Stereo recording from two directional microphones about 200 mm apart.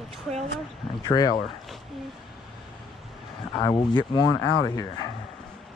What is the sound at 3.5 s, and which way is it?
Speech, 20° left (ahead or behind).